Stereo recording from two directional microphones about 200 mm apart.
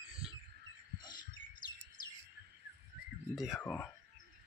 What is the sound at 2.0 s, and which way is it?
Bird, 45° left (ahead or behind).